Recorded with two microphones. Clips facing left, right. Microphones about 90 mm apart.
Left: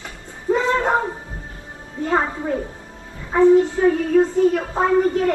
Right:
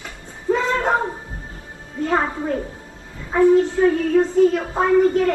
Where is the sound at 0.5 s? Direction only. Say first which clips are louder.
Left 1 dB; 15° left (ahead or behind).